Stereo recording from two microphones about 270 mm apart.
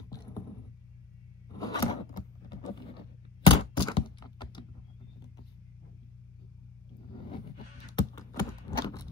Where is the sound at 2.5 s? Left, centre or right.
Centre.